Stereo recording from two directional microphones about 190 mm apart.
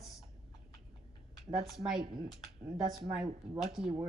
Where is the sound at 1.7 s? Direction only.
Centre (ahead or behind).